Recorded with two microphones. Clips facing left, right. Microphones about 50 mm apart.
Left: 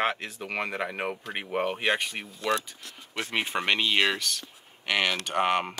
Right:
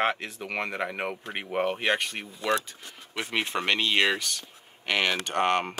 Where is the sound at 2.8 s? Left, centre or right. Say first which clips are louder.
Even; centre.